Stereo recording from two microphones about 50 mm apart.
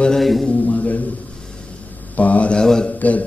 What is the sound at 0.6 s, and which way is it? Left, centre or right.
Music, left.